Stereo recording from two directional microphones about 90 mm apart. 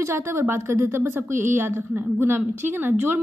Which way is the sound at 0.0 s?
30° right (ahead or behind).